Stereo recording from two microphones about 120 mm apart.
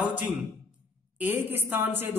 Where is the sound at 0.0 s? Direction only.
10° right (ahead or behind).